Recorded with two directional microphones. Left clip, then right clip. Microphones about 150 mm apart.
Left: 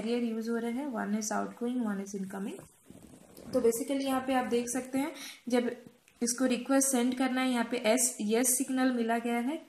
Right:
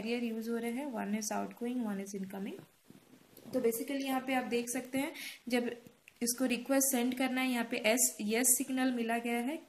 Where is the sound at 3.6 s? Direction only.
30° right (ahead or behind).